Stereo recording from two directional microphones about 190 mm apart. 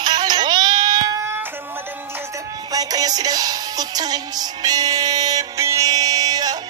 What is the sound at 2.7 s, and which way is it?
Music, 20° right (ahead or behind).